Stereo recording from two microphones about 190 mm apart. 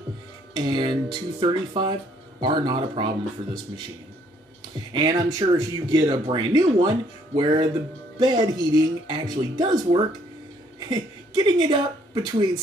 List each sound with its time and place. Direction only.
0.6 s speech: 25° right (ahead or behind)
4.9 s a woman's voice: 20° right (ahead or behind)